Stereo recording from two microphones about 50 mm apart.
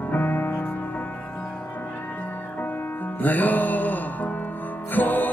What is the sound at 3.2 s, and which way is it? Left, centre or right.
Music, left.